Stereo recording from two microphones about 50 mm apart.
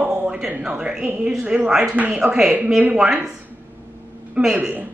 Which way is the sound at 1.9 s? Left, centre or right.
Right.